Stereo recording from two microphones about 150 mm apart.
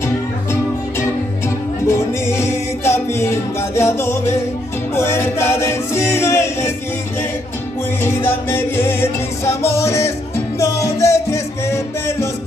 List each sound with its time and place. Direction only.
1.9 s music: 15° left (ahead or behind)
8.0 s music: 15° left (ahead or behind)